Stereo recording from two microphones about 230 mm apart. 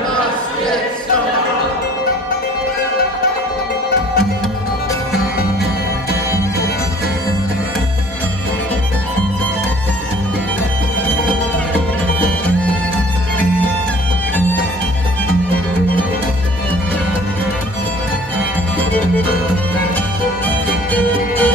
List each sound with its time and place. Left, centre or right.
20.4 s music: centre